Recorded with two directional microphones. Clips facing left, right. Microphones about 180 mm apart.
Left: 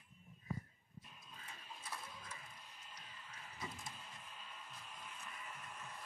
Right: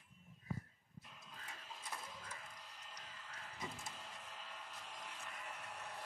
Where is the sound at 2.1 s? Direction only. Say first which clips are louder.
Right 1 dB; 90° right.